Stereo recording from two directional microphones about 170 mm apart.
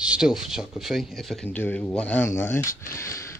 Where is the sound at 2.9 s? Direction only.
15° left (ahead or behind).